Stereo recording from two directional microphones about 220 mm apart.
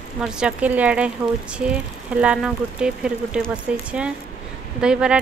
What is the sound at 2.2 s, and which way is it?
Speech, 5° right (ahead or behind).